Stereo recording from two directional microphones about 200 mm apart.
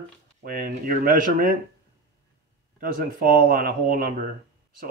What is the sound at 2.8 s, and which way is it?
Speech, 45° right (ahead or behind).